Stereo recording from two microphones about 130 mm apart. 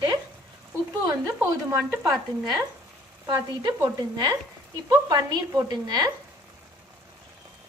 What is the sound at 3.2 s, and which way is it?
Frying, 30° right (ahead or behind).